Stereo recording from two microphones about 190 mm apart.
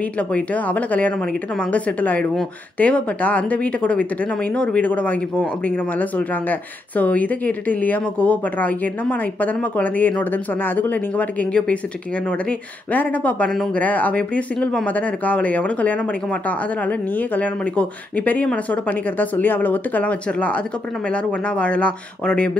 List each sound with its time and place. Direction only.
0.0 s a woman's voice: 5° left (ahead or behind)